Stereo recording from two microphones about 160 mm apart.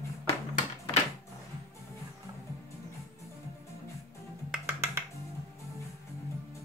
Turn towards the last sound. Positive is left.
turn(degrees=-10)  # may be behind; listen again after turning